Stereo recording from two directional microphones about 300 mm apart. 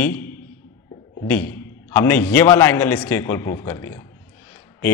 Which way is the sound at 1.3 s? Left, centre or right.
Centre.